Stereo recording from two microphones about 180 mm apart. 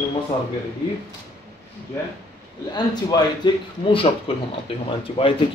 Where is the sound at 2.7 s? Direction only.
25° left (ahead or behind).